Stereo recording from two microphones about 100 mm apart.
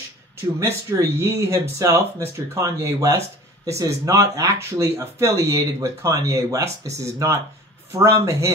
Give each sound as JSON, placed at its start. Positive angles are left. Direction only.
{"t": 0.6, "sound": "speech", "side_deg": -25}